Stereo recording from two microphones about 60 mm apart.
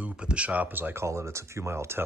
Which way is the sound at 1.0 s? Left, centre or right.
Right.